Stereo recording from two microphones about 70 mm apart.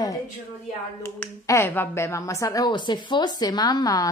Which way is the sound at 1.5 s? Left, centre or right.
Left.